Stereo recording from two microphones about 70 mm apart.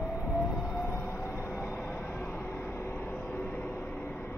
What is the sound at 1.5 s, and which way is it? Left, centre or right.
Vehicle, left.